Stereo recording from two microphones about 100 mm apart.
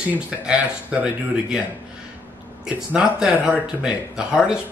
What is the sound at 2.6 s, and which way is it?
Speech, 10° right (ahead or behind).